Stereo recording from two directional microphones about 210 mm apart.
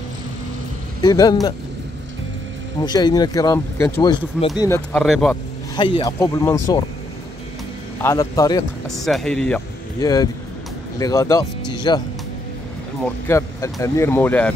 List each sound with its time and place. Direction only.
1.0 s speech: 20° left (ahead or behind)
2.8 s speech: 20° left (ahead or behind)
5.0 s speech: centre (ahead or behind)
5.8 s speech: 20° left (ahead or behind)
8.0 s speech: 10° left (ahead or behind)
8.8 s speech: centre (ahead or behind)
9.9 s speech: 20° left (ahead or behind)
13.3 s speech: 15° left (ahead or behind)